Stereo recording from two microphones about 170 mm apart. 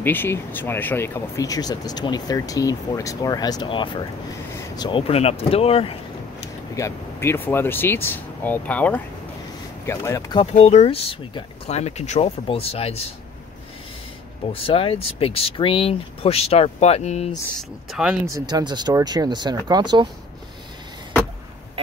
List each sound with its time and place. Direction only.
0.0 s speech: 10° left (ahead or behind); by 5.9 s 35° left (ahead or behind)
6.7 s speech: 15° left (ahead or behind)
10.4 s speech: 40° left (ahead or behind)
14.5 s speech: 30° left (ahead or behind)
17.6 s speech: 5° right (ahead or behind)
18.2 s speech: 20° right (ahead or behind)